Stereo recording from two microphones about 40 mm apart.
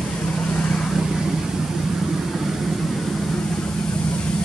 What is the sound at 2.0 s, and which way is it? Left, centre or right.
Vehicle, centre.